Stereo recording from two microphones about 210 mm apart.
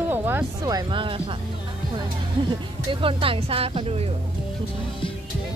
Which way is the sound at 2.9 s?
25° right (ahead or behind).